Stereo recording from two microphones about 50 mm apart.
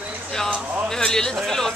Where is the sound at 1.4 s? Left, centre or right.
Centre.